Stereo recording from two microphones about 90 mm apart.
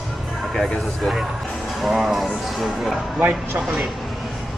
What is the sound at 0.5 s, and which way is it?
A man's voice, 5° left (ahead or behind).